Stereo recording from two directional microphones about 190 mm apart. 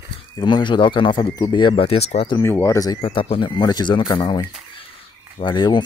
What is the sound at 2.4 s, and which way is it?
Speech, 15° left (ahead or behind).